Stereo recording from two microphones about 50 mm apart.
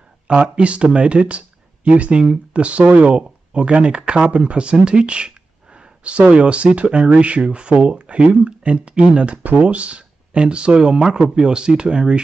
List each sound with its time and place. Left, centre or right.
0.3 s speech: right